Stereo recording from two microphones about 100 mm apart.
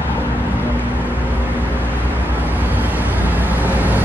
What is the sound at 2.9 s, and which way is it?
Vehicle, 20° right (ahead or behind).